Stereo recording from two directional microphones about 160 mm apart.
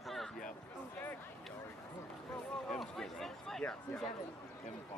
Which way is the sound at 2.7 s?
Centre (ahead or behind).